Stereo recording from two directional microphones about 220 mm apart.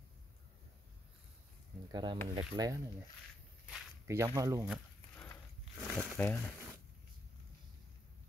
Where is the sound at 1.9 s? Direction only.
20° right (ahead or behind).